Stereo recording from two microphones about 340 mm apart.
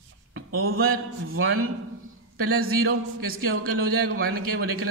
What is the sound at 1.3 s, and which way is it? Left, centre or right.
Speech, right.